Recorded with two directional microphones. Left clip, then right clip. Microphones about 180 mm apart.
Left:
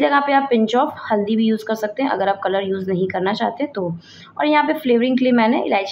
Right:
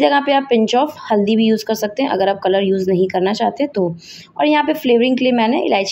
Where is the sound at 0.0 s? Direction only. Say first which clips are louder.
Right 2 dB; 35° right (ahead or behind).